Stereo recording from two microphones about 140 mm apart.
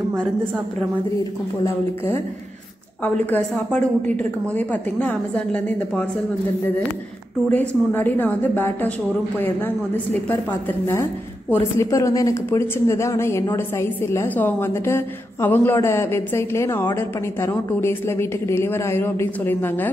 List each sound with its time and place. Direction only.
3.0 s a woman's voice: 10° left (ahead or behind)
7.5 s a woman's voice: 15° left (ahead or behind)
11.5 s a woman's voice: 20° left (ahead or behind)